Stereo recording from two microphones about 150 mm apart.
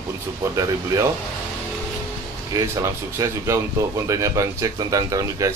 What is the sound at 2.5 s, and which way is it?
Speech, 20° right (ahead or behind).